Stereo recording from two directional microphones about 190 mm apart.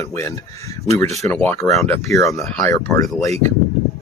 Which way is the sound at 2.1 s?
15° left (ahead or behind).